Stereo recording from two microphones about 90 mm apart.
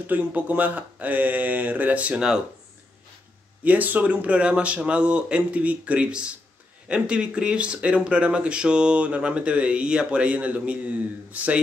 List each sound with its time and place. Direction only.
0.0 s speech: 20° right (ahead or behind)
3.6 s speech: 20° right (ahead or behind)